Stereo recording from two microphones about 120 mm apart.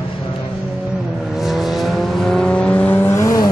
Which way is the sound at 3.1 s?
30° left (ahead or behind).